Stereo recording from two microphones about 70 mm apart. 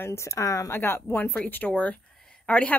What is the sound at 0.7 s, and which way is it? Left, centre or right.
Speech, left.